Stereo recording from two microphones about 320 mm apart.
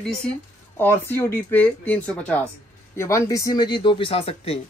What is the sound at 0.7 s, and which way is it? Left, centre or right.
Speech, centre.